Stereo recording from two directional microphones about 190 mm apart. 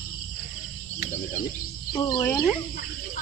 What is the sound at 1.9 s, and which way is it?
Speech, 20° left (ahead or behind).